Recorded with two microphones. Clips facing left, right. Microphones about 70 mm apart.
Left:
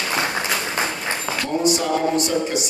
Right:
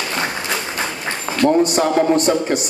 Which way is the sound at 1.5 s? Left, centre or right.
Right.